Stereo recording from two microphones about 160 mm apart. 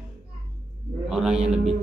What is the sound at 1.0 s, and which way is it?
Speech, 5° right (ahead or behind).